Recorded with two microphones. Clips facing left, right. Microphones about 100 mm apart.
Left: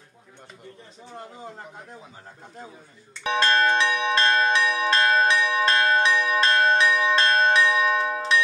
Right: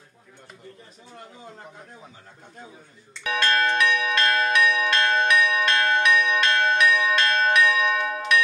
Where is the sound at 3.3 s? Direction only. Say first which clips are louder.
Left 2 dB; 30° left (ahead or behind).